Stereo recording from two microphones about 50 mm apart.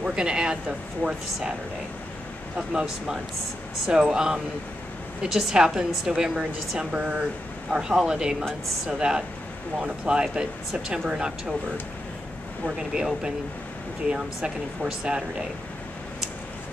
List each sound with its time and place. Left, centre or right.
0.0 s speech: centre
2.5 s speech: centre
12.6 s speech: centre